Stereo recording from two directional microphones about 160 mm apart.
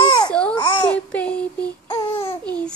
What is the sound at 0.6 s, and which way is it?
Babbling, 30° left (ahead or behind).